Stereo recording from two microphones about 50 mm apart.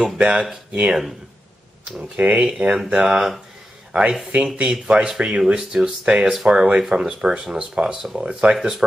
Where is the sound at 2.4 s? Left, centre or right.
Centre.